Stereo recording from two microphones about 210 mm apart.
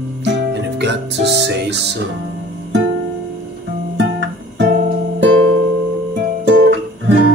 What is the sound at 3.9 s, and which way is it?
Guitar, 55° right (ahead or behind).